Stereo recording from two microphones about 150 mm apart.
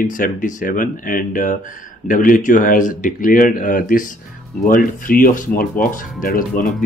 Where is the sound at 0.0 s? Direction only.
65° left (ahead or behind).